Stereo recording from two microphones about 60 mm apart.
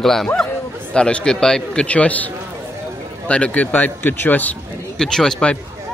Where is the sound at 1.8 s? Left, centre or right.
Left.